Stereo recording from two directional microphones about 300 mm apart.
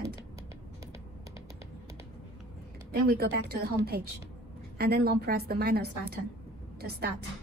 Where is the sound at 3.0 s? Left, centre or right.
Right.